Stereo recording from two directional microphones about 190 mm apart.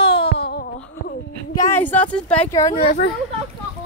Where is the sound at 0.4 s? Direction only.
55° left (ahead or behind).